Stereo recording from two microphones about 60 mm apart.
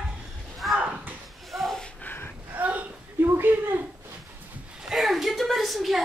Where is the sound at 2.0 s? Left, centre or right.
Left.